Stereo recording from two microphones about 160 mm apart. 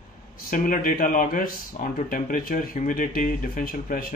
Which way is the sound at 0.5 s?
60° left (ahead or behind).